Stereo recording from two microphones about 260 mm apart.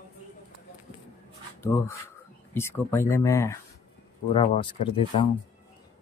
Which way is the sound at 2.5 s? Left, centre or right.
Centre.